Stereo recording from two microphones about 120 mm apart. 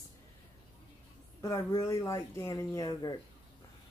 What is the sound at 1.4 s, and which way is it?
Speech, 30° left (ahead or behind).